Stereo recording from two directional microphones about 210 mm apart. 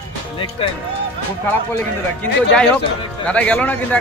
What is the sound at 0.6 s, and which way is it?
Speech, 25° left (ahead or behind).